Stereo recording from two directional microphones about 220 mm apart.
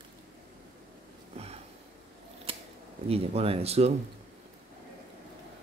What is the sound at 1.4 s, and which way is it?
Sniff, 30° right (ahead or behind).